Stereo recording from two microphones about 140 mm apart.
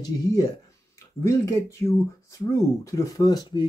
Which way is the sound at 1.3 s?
20° left (ahead or behind).